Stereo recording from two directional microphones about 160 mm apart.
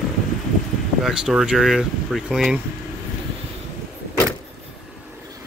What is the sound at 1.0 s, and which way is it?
Speech, 5° right (ahead or behind).